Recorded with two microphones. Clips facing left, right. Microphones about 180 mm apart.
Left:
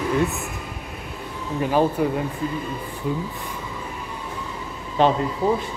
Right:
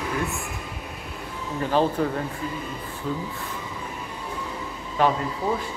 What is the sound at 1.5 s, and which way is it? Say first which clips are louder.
Speech: left 2 dB; 10° left (ahead or behind).